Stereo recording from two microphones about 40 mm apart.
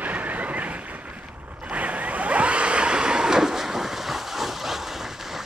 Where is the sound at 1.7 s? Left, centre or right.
Right; by 4.7 s centre.